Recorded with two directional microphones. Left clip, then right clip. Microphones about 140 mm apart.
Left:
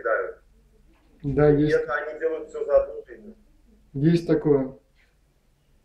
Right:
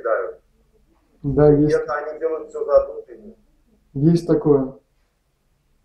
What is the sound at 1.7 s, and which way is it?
A man's voice, 35° left (ahead or behind).